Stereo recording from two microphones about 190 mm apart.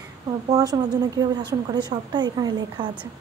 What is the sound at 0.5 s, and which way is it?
A woman's voice, 20° right (ahead or behind).